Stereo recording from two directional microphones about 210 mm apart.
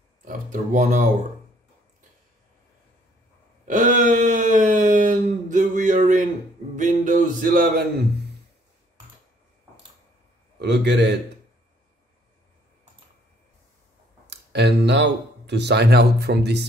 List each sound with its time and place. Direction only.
0.2 s speech: 35° right (ahead or behind)
3.6 s a sound: 35° right (ahead or behind)
10.6 s a man's voice: 55° right (ahead or behind)
14.2 s speech: 50° right (ahead or behind)